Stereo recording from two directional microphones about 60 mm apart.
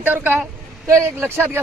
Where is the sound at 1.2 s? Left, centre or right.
Right.